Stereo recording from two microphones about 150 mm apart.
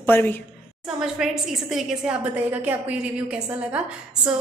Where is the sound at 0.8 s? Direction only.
5° right (ahead or behind).